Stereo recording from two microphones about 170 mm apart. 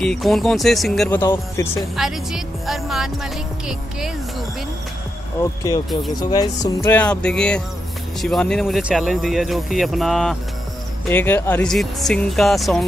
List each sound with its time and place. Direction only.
0.0 s speech: centre (ahead or behind)
1.2 s music: 15° left (ahead or behind)
2.0 s speech: centre (ahead or behind)
5.4 s speech: 20° left (ahead or behind)
6.1 s music: 20° left (ahead or behind); by 7.6 s 5° left (ahead or behind)
8.2 s speech: 5° left (ahead or behind)
11.1 s speech: 10° left (ahead or behind)